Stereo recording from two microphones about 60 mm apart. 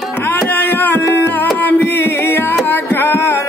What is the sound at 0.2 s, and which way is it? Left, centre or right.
Music, left.